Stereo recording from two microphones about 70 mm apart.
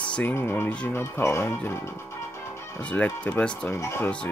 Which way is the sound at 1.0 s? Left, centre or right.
Left.